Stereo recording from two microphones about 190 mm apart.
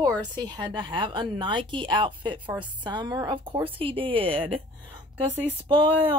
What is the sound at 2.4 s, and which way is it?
Speech, 10° right (ahead or behind).